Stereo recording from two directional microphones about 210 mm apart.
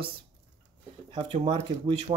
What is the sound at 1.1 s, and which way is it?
Speech, 25° right (ahead or behind).